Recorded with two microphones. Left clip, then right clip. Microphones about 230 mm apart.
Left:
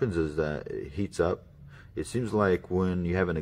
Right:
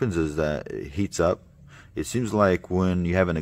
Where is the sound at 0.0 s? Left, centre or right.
Right.